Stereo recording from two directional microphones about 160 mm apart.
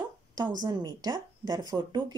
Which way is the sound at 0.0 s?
25° right (ahead or behind).